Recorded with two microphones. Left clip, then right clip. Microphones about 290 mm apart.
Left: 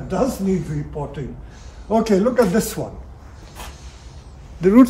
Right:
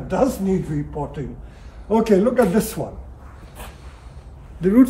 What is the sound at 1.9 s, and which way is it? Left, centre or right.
Speech, centre.